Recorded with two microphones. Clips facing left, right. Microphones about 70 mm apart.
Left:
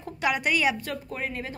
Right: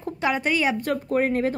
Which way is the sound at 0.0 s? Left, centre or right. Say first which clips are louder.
Right 2 dB; right.